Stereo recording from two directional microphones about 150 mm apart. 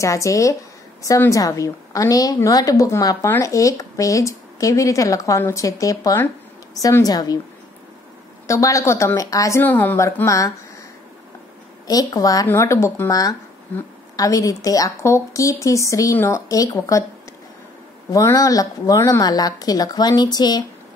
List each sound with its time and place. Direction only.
0.0 s speech: 20° left (ahead or behind)
8.5 s speech: 20° left (ahead or behind)
11.9 s speech: 25° left (ahead or behind)
18.1 s speech: 20° left (ahead or behind)